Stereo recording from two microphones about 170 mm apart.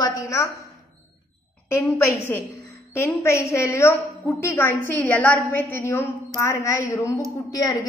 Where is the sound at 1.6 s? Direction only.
15° left (ahead or behind).